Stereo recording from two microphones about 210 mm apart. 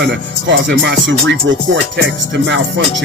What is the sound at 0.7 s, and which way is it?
Speech, 60° right (ahead or behind).